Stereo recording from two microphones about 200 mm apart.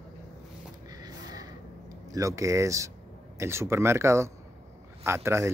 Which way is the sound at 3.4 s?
15° right (ahead or behind).